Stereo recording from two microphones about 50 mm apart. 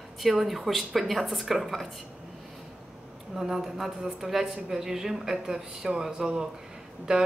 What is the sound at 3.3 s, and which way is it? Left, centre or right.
A woman's voice, centre.